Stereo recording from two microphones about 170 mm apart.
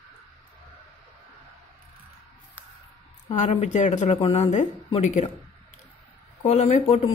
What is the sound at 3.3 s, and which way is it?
A man's voice, 40° left (ahead or behind).